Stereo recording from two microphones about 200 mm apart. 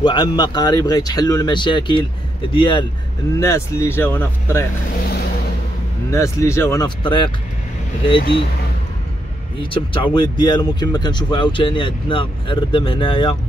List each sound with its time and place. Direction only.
0.0 s speech: 20° left (ahead or behind)
3.3 s speech: 15° left (ahead or behind)
4.9 s speech: 50° left (ahead or behind)
6.0 s speech: 15° left (ahead or behind)
9.6 s speech: 25° left (ahead or behind)